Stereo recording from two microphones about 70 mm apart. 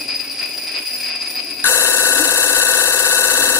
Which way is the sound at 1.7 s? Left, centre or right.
Left.